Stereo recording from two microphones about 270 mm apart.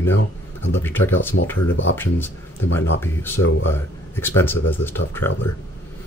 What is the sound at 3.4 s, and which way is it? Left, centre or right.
Speech, left.